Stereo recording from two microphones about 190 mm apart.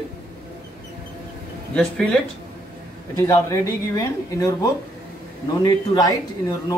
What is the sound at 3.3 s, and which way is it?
Speech, 15° left (ahead or behind).